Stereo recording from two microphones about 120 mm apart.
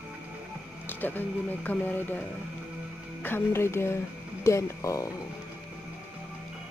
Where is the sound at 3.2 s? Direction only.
20° left (ahead or behind).